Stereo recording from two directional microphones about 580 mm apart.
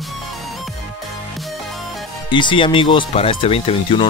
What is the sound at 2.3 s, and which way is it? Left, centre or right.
Speech, centre.